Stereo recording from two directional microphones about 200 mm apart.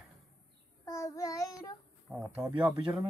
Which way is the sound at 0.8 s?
15° left (ahead or behind).